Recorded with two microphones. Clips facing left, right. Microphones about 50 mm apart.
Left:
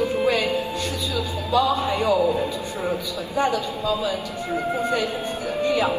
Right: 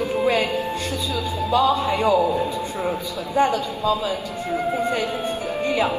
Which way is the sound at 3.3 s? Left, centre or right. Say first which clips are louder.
Right 3 dB; right.